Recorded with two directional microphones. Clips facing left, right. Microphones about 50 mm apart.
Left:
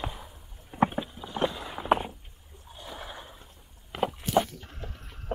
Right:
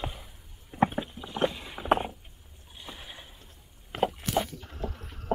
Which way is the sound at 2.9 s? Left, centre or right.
Left.